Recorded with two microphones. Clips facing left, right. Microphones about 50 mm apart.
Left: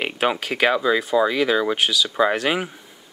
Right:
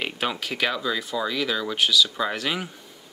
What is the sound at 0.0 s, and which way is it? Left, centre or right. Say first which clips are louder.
Speech: left 6 dB; left.